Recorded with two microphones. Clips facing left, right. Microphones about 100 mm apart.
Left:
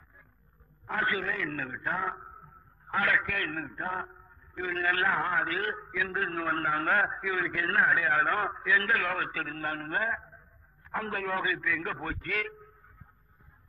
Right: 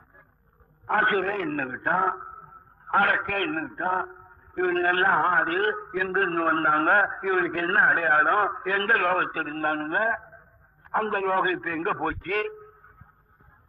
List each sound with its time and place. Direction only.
0.8 s a man's voice: 55° right (ahead or behind)